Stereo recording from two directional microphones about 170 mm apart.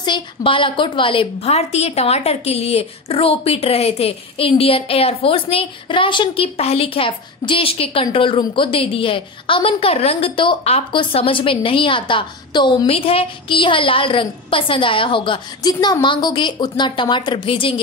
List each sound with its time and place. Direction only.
0.0 s a woman's voice: 30° left (ahead or behind)